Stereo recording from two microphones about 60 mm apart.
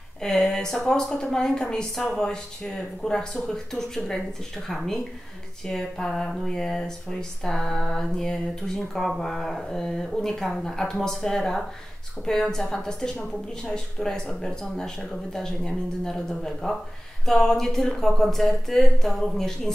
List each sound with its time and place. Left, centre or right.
0.2 s speech: centre